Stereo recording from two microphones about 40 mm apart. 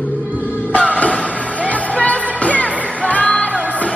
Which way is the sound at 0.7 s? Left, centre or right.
Left.